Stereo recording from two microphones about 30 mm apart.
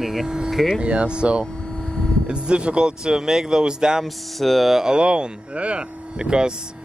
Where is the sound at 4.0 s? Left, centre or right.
Centre.